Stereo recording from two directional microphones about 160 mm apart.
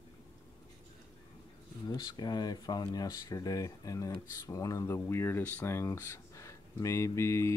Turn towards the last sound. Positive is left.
turn(degrees=15)  # may be behind; listen again after turning